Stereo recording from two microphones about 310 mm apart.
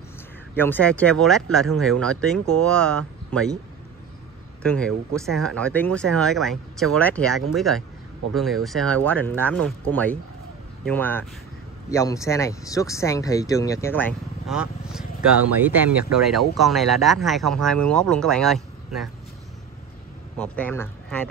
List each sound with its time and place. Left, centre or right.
0.6 s speech: centre
4.6 s speech: centre
20.3 s speech: centre